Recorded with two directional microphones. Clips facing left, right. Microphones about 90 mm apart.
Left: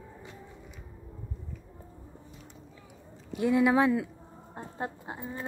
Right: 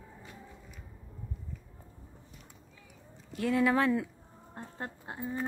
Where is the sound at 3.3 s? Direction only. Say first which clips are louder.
Left 3 dB; 15° left (ahead or behind).